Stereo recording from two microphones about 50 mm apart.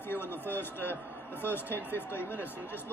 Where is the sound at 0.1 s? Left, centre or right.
Left.